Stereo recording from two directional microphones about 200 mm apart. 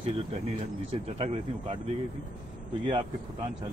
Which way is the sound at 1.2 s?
30° right (ahead or behind).